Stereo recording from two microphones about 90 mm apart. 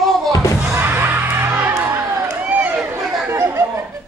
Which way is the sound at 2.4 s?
15° right (ahead or behind).